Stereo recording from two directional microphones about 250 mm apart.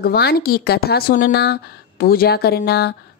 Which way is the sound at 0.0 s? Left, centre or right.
Left.